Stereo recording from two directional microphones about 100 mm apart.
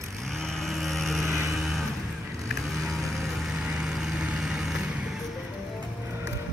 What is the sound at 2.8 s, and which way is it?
Vehicle, centre (ahead or behind).